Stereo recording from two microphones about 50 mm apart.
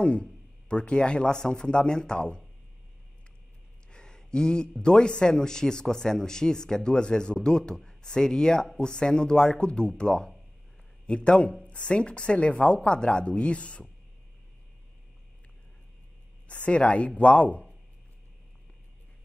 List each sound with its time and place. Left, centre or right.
0.0 s a man's voice: left
3.9 s a man's voice: centre
16.4 s a woman's voice: left